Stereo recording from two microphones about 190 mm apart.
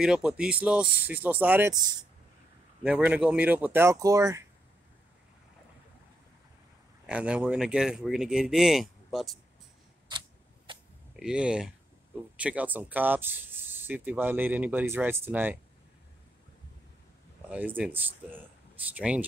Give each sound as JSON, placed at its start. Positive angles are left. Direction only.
{"t": 0.0, "sound": "speech", "side_deg": -5}
{"t": 2.8, "sound": "speech", "side_deg": -5}
{"t": 7.1, "sound": "speech", "side_deg": -5}
{"t": 10.1, "sound": "a sound", "side_deg": -25}
{"t": 10.7, "sound": "arrow", "side_deg": -25}
{"t": 11.1, "sound": "speech", "side_deg": -5}
{"t": 17.5, "sound": "speech", "side_deg": -10}